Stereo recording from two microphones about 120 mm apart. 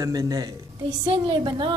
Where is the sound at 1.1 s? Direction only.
45° right (ahead or behind).